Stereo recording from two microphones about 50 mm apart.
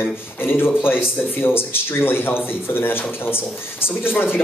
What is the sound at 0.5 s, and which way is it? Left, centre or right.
Speech, left.